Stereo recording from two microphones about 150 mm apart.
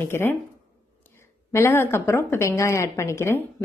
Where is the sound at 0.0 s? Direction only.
15° left (ahead or behind).